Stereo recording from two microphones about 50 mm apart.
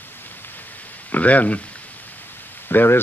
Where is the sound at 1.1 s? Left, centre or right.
Left.